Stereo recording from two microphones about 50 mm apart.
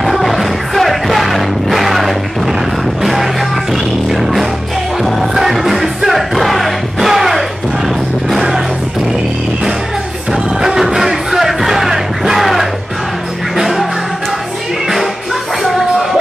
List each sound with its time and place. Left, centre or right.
0.0 s music: centre
10.6 s music: centre
15.6 s music: centre